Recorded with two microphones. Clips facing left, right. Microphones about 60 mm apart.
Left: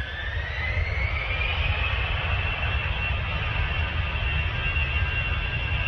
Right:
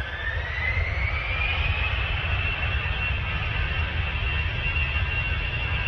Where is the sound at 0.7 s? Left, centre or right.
Right.